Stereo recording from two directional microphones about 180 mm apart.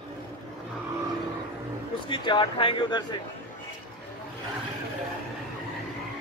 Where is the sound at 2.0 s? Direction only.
25° left (ahead or behind).